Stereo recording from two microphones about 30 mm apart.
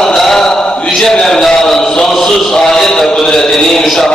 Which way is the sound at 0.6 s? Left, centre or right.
Left.